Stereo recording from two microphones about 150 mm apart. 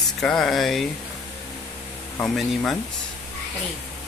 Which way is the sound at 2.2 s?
Centre (ahead or behind).